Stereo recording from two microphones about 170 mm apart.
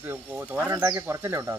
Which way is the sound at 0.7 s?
20° right (ahead or behind).